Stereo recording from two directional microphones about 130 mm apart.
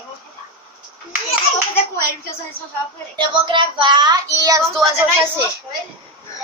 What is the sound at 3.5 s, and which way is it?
Child singing, 40° right (ahead or behind).